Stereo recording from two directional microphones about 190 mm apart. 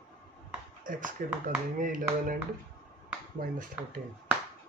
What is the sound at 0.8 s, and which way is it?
Speech, 45° right (ahead or behind).